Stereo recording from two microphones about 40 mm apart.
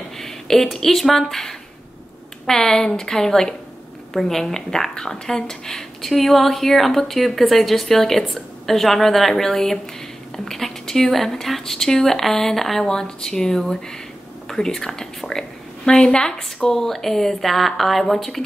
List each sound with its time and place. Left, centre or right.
0.2 s a woman's voice: centre
14.5 s whispering: centre
15.9 s speech: left
16.6 s a woman's voice: centre